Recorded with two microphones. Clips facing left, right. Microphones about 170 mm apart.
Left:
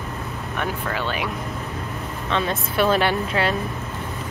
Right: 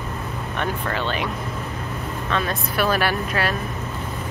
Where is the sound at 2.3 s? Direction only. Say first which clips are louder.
Left 2 dB; 20° left (ahead or behind).